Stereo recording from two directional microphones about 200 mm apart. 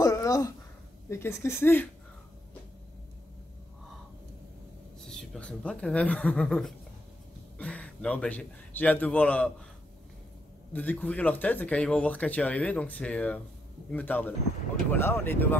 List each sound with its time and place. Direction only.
0.0 s a sound: 15° left (ahead or behind)
1.0 s speech: 10° left (ahead or behind)
5.0 s a man's voice: centre (ahead or behind)
10.7 s speech: 10° left (ahead or behind)